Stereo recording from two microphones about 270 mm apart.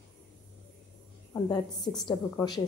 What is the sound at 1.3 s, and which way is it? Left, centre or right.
A woman's voice, centre.